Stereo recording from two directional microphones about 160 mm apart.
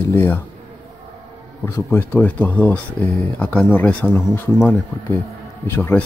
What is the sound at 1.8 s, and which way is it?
Speech, 15° left (ahead or behind).